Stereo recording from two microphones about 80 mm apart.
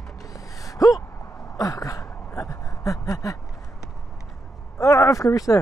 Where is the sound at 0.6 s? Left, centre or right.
Left.